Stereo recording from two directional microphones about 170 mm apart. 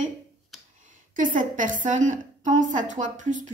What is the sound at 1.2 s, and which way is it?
A woman's voice, 50° right (ahead or behind).